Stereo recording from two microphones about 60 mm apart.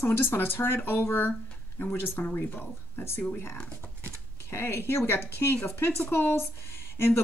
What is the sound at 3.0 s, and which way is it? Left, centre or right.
Speech, left.